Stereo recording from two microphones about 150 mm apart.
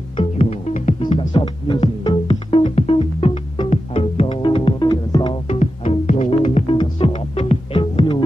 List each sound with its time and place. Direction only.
0.2 s music: 45° left (ahead or behind)
1.3 s music: 35° left (ahead or behind)
5.6 s music: 50° left (ahead or behind)
6.8 s music: 35° left (ahead or behind)